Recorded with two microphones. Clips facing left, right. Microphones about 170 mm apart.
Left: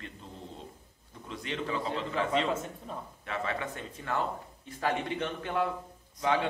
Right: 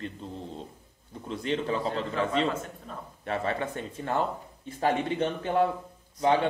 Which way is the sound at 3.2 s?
35° right (ahead or behind).